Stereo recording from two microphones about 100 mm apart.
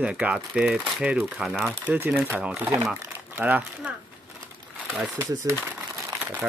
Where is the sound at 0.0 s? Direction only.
10° right (ahead or behind).